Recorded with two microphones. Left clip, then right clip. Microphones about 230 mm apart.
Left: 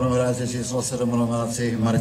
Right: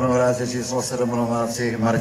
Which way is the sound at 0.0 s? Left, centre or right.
Left.